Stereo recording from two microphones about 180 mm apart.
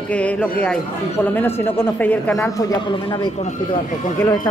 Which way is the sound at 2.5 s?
20° left (ahead or behind).